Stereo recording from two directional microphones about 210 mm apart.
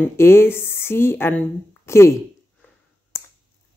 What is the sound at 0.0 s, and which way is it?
Speech, 10° left (ahead or behind).